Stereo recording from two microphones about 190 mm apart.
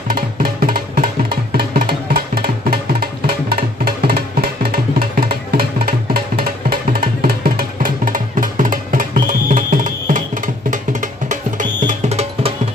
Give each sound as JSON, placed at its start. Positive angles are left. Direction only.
{"t": 0.1, "sound": "music", "side_deg": -50}